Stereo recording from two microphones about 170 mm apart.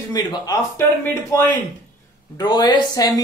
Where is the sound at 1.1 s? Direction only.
15° left (ahead or behind).